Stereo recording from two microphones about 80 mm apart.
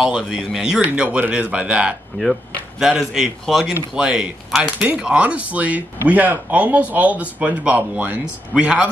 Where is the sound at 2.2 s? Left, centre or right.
Centre.